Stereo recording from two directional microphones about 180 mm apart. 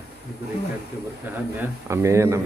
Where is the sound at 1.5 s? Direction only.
15° right (ahead or behind).